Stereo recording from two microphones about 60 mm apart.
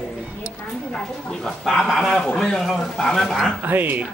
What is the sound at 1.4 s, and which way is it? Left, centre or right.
Speech, centre.